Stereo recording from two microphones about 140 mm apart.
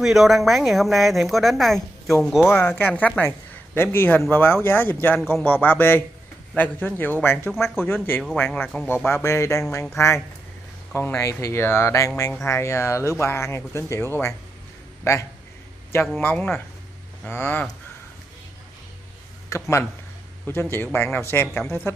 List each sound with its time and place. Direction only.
0.0 s a woman's voice: centre (ahead or behind); by 14.0 s 20° left (ahead or behind)
16.2 s speech: 15° left (ahead or behind)
19.5 s speech: 20° left (ahead or behind)
20.7 s speech: 15° left (ahead or behind)